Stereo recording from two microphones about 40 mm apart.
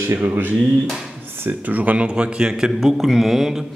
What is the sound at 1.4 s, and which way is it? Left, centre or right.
Speech, right.